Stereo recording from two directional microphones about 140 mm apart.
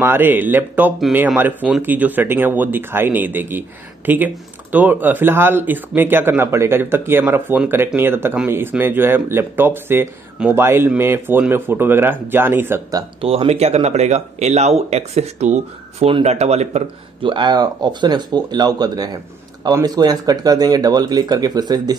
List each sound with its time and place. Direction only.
0.0 s speech: 15° right (ahead or behind)
13.2 s speech: 45° right (ahead or behind)
17.3 s speech: 30° right (ahead or behind)